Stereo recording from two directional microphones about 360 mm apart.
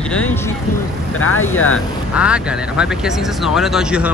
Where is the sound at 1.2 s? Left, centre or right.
Left.